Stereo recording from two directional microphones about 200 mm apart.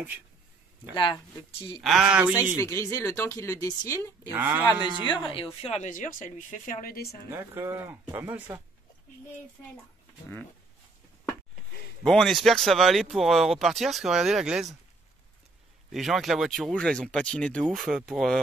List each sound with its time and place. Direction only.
0.9 s speech: 25° left (ahead or behind)
1.8 s speech: centre (ahead or behind)
2.5 s speech: 15° left (ahead or behind)
4.3 s speech: 10° right (ahead or behind)
5.0 s a woman's voice: 25° left (ahead or behind); by 7.2 s 50° left (ahead or behind)
7.2 s speech: 10° right (ahead or behind)
12.0 s speech: centre (ahead or behind)
15.9 s speech: centre (ahead or behind)